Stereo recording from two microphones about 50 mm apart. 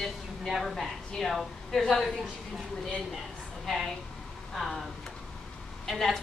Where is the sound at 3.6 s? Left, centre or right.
Centre.